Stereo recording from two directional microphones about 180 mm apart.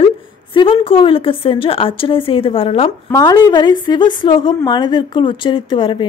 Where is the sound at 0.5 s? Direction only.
30° left (ahead or behind).